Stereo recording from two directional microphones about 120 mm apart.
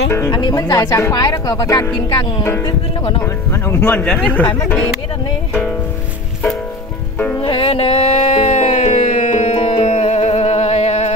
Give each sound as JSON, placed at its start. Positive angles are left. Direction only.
{"t": 0.3, "sound": "speech", "side_deg": 35}
{"t": 3.6, "sound": "speech", "side_deg": 15}
{"t": 7.2, "sound": "music", "side_deg": 15}
{"t": 7.4, "sound": "music", "side_deg": 50}